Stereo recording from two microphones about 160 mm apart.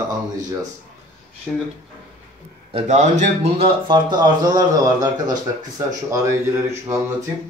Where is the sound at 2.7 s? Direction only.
45° right (ahead or behind).